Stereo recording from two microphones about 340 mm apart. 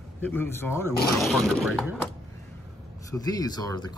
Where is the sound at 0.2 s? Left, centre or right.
Centre.